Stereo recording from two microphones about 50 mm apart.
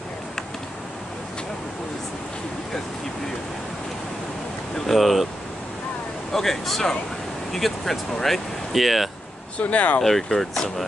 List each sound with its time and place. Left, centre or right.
4.7 s speech: centre
6.3 s speech: centre
9.6 s speech: left
10.0 s speech: centre